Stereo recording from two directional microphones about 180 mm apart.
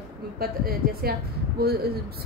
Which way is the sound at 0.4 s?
60° right (ahead or behind).